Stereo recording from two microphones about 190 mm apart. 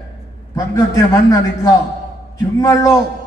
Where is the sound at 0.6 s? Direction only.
15° left (ahead or behind).